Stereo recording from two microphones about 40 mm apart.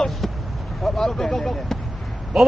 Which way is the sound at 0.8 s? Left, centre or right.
Centre.